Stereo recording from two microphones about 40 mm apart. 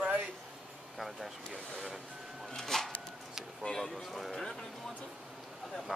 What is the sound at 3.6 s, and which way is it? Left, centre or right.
Speech, centre.